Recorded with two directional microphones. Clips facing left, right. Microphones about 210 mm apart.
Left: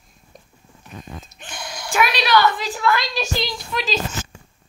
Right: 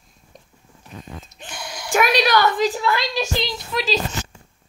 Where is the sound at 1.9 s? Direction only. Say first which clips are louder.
Right 1 dB; 45° right (ahead or behind).